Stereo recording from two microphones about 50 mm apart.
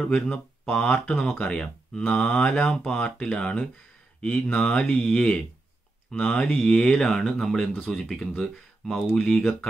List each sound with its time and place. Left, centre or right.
0.0 s speech: centre
7.1 s speech: centre